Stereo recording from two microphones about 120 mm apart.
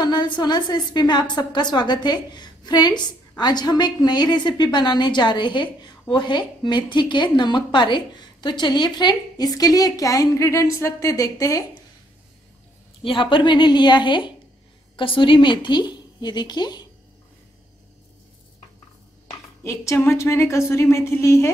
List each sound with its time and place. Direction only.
0.0 s a woman's voice: 35° left (ahead or behind)
13.0 s a woman's voice: 45° left (ahead or behind)
19.6 s a woman's voice: 25° left (ahead or behind)